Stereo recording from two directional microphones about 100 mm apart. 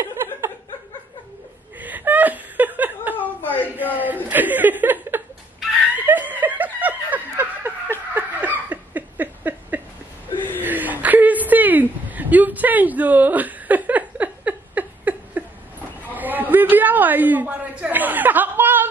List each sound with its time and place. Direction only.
1.8 s laughter: 15° right (ahead or behind)
3.2 s chuckle: 20° left (ahead or behind)
3.6 s speech: 15° right (ahead or behind)
5.9 s laughter: 15° right (ahead or behind)
8.1 s a sound: 20° right (ahead or behind)